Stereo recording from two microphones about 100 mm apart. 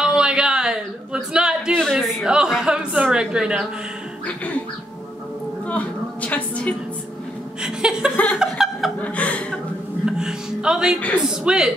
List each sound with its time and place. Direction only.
0.0 s a sound: 10° right (ahead or behind)
5.7 s a woman's voice: 15° left (ahead or behind)
7.6 s speech: 10° right (ahead or behind)
8.4 s chuckle: 5° right (ahead or behind)
9.0 s speech: 15° left (ahead or behind)
10.0 s speech: 10° right (ahead or behind)